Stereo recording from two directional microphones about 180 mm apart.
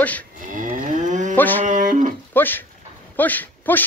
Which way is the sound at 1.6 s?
45° right (ahead or behind).